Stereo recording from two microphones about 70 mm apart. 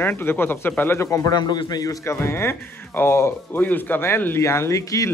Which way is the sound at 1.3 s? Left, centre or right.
Left.